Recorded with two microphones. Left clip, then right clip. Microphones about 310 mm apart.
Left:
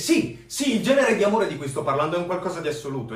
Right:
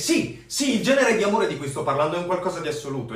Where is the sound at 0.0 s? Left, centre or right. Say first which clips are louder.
Left 1 dB; centre.